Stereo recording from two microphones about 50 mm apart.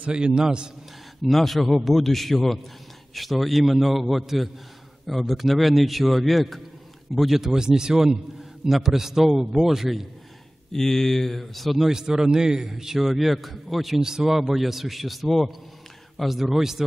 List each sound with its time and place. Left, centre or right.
0.1 s a man's voice: centre
1.2 s a man's voice: centre
10.7 s speech: centre
12.2 s a man's voice: centre